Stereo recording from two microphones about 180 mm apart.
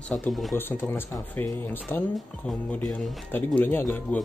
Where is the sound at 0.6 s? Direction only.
10° left (ahead or behind).